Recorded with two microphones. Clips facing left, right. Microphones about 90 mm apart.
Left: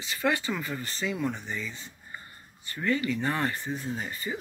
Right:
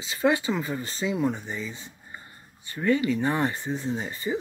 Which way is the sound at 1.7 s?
15° right (ahead or behind).